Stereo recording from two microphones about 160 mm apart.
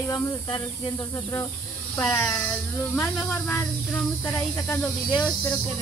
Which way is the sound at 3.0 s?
5° left (ahead or behind).